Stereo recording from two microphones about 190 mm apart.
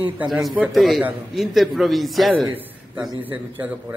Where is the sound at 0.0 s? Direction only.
5° right (ahead or behind).